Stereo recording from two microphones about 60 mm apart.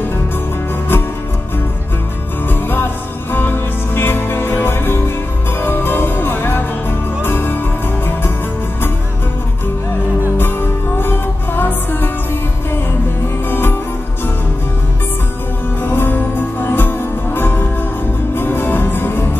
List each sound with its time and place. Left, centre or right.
2.7 s music: left
11.0 s music: left
13.5 s music: left
15.8 s music: left